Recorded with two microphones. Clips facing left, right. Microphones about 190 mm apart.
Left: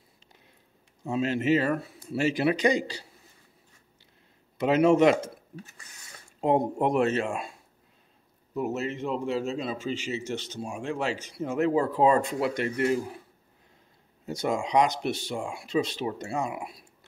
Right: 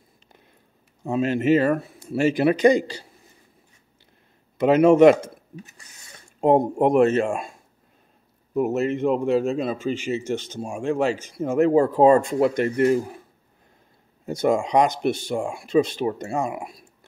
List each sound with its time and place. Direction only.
1.0 s speech: 50° right (ahead or behind)
4.6 s speech: 55° right (ahead or behind)
6.4 s speech: 50° right (ahead or behind)
8.5 s speech: 55° right (ahead or behind)
14.2 s speech: 50° right (ahead or behind)